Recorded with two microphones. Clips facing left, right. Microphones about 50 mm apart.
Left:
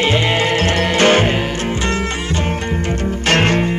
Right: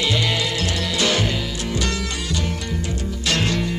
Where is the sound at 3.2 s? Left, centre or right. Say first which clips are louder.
Left 7 dB; left.